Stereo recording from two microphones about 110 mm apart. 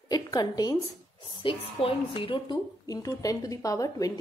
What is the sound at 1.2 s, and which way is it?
Speech, 50° left (ahead or behind).